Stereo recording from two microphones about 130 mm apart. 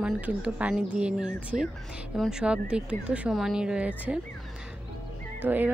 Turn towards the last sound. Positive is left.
turn(degrees=-15)  # may be behind; listen again after turning